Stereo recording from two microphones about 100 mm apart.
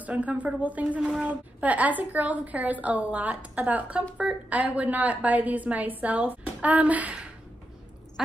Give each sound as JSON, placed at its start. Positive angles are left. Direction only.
{"t": 0.0, "sound": "a woman's voice", "side_deg": -15}